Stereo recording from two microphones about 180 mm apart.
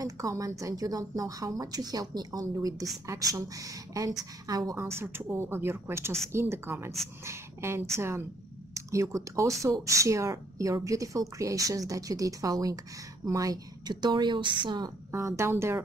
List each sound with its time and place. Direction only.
0.0 s a woman's voice: 20° right (ahead or behind)